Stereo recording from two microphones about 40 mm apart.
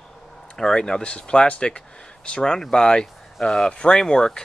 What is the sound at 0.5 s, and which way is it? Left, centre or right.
Speech, centre.